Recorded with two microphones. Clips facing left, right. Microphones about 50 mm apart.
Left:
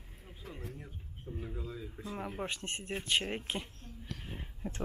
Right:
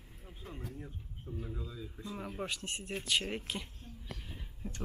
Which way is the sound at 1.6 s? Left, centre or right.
Left.